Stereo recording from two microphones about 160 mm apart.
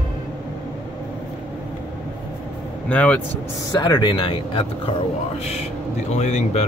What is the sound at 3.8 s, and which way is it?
Speech, 25° left (ahead or behind).